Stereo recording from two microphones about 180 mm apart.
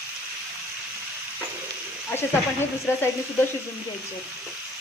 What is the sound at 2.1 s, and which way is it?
Speech, 15° left (ahead or behind).